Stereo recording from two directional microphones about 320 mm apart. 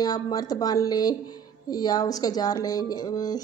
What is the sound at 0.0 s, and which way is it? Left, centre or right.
Speech, centre.